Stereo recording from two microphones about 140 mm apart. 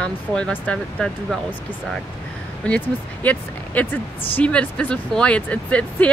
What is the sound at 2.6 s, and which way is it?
Speech, 10° left (ahead or behind).